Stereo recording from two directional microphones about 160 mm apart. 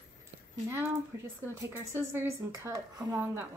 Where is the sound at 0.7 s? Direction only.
15° right (ahead or behind).